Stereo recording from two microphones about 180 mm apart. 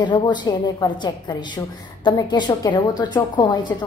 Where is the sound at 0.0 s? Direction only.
25° left (ahead or behind).